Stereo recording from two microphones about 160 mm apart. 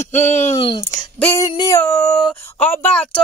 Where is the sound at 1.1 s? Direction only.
10° left (ahead or behind).